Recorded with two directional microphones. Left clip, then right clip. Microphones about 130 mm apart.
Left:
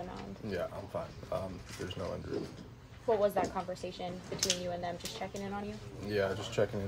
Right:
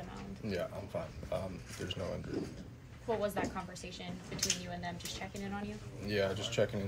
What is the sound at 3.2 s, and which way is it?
Speech, 55° left (ahead or behind).